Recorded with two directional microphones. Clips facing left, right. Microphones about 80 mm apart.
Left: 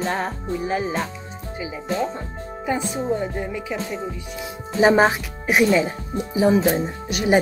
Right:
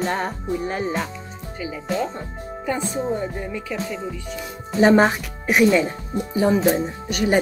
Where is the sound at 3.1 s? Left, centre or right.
Centre.